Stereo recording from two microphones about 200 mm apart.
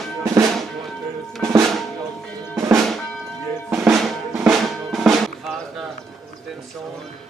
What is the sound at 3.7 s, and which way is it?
Drum, 5° right (ahead or behind).